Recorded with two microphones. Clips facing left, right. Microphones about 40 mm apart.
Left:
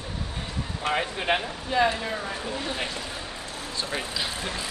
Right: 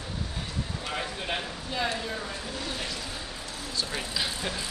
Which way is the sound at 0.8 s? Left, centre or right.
Left.